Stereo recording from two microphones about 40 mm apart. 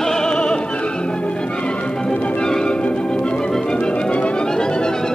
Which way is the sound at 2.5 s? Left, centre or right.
Centre.